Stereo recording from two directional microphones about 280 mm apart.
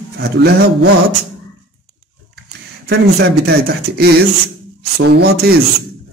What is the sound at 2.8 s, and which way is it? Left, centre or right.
Speech, right.